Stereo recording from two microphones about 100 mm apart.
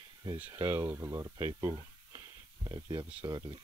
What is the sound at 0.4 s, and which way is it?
Speech, 25° right (ahead or behind).